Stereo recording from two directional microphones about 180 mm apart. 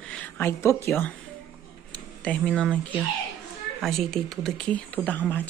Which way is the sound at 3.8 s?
Centre (ahead or behind).